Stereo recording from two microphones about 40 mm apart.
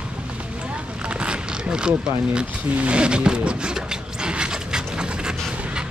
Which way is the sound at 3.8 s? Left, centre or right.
Right.